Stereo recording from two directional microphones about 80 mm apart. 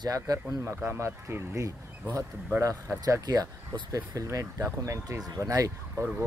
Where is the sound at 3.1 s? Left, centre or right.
Right.